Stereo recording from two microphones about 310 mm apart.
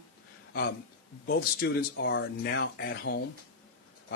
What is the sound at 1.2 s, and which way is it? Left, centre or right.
A man's voice, left.